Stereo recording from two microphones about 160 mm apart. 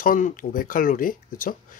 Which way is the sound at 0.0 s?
55° left (ahead or behind).